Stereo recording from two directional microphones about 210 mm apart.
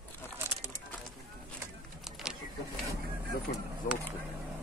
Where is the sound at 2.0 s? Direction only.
Centre (ahead or behind).